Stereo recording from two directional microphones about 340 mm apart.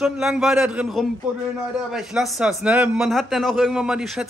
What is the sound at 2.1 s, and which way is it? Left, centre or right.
A man's voice, centre.